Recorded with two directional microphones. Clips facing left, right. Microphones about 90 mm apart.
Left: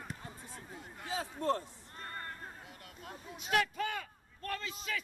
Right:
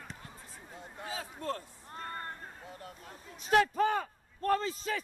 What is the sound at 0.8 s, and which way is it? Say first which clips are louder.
Speech: left 1 dB; 25° right (ahead or behind).